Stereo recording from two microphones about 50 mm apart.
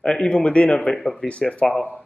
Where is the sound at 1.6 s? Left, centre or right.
Centre.